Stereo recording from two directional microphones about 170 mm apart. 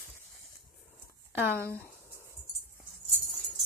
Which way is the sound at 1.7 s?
15° left (ahead or behind).